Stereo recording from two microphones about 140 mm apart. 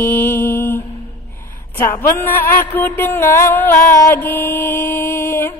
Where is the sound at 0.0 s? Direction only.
15° left (ahead or behind).